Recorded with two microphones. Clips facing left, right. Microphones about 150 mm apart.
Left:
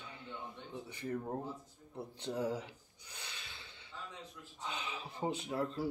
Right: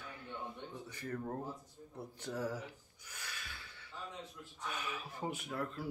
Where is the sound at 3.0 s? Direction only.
25° left (ahead or behind).